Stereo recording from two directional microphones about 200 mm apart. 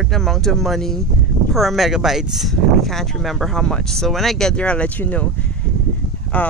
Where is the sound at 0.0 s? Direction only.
Centre (ahead or behind).